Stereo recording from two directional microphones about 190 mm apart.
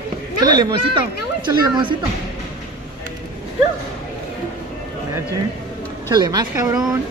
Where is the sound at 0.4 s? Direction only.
20° right (ahead or behind).